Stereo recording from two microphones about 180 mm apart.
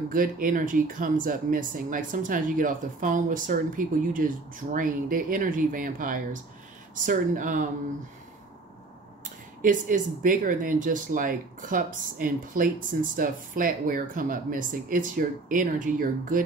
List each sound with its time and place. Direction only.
0.1 s speech: 50° right (ahead or behind)
9.2 s speech: 45° right (ahead or behind)